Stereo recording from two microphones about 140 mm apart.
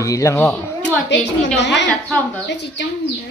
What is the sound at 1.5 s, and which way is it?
Speech, 10° left (ahead or behind).